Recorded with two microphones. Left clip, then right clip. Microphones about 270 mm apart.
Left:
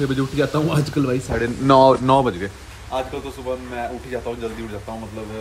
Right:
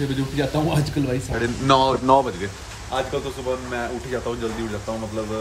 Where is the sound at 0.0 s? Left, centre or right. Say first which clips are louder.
Left 4 dB; centre.